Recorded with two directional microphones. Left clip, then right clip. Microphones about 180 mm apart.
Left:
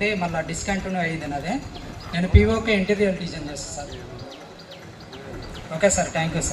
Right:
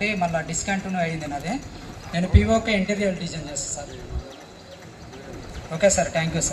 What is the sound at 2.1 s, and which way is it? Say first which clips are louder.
A man's voice: even; 70° right (ahead or behind).